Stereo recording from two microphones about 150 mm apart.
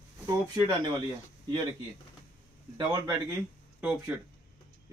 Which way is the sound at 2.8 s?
30° right (ahead or behind).